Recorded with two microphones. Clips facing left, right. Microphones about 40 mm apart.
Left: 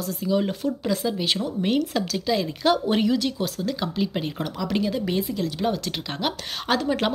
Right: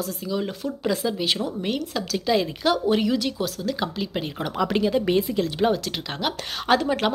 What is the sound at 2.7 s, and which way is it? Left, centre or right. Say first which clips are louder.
Speech: even; centre.